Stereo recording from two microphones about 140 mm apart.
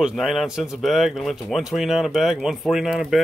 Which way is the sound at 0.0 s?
Centre (ahead or behind).